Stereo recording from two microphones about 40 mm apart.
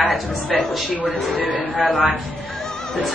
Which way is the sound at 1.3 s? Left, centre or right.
Right.